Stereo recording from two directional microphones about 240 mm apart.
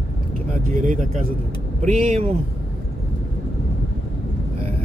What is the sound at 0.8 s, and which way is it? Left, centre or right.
Speech, right.